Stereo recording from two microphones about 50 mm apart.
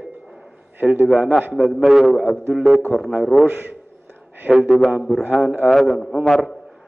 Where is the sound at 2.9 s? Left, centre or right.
Centre.